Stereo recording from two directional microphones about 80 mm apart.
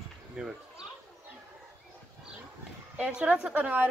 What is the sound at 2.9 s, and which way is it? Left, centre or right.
Speech, centre.